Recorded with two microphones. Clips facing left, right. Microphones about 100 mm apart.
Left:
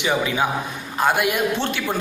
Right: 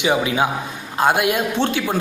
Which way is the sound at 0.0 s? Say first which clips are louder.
Right 3 dB; 15° right (ahead or behind).